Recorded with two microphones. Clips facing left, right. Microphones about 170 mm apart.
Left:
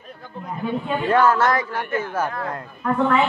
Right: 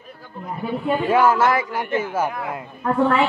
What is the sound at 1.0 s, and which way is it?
Speech, 10° right (ahead or behind).